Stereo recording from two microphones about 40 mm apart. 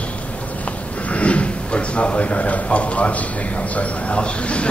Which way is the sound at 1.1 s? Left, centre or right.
Left.